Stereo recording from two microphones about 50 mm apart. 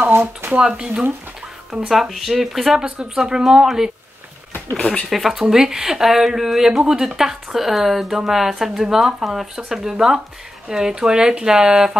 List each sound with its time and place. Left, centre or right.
0.1 s a sound: right
0.6 s speech: centre
1.9 s speech: centre
2.8 s speech: centre
4.7 s speech: left
5.1 s speech: centre